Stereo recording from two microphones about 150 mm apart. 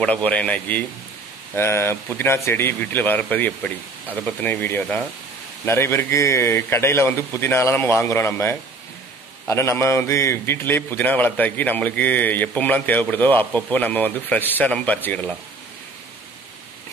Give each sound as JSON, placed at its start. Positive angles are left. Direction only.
{"t": 0.0, "sound": "a man's voice", "side_deg": 10}